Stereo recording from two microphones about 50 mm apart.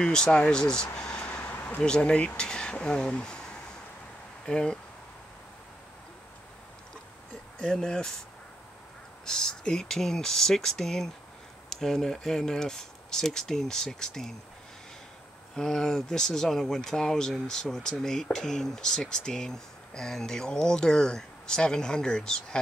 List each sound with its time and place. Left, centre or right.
0.0 s speech: centre
1.4 s a sound: left
1.8 s speech: centre
7.7 s speech: centre
9.2 s speech: centre
15.5 s speech: centre